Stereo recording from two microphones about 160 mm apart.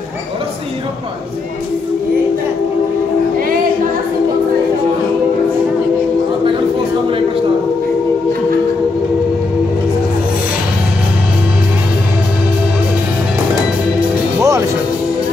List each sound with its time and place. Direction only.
14.4 s music: 20° right (ahead or behind)